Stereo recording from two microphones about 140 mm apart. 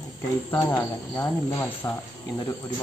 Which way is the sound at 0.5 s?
15° left (ahead or behind).